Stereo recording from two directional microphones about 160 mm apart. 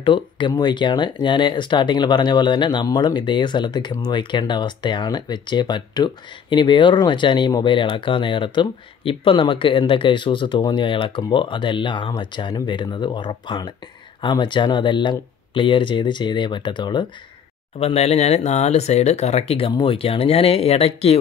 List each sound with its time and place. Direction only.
0.0 s speech: 30° left (ahead or behind)
17.7 s speech: 40° left (ahead or behind)